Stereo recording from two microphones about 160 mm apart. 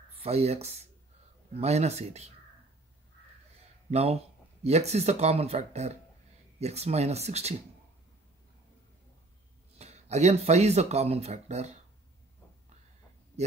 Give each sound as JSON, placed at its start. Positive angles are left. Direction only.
{"t": 0.2, "sound": "speech", "side_deg": -40}
{"t": 3.9, "sound": "speech", "side_deg": -40}
{"t": 9.8, "sound": "speech", "side_deg": -45}